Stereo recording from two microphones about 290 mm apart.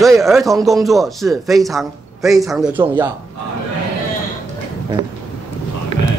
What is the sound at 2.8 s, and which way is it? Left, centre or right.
Speech, centre.